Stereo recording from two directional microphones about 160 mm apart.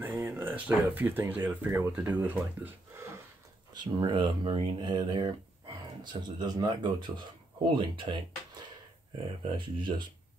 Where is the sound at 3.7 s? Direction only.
25° right (ahead or behind).